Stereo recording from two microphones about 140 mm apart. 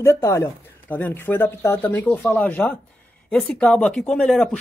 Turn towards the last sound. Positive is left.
turn(degrees=10)  # may be behind; listen again after turning